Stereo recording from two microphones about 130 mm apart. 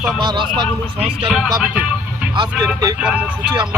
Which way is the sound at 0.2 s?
35° right (ahead or behind).